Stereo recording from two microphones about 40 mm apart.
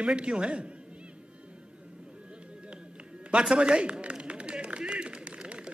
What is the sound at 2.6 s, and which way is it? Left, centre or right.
Music, right.